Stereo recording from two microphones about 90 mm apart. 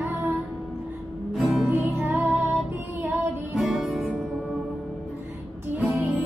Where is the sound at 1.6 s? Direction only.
20° right (ahead or behind).